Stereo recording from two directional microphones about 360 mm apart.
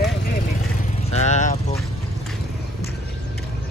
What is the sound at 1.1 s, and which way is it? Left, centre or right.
Speech, centre.